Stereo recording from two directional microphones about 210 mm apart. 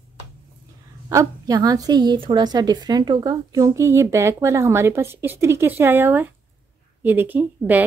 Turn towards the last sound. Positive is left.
turn(degrees=-10)  # may be behind; listen again after turning